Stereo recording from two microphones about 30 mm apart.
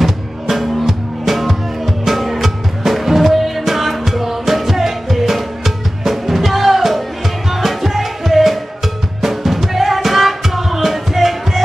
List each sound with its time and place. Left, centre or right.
0.0 s drum: centre
0.8 s music: centre